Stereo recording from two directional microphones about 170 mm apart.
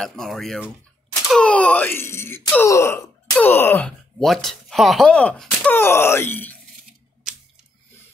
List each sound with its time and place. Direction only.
0.0 s speech: centre (ahead or behind)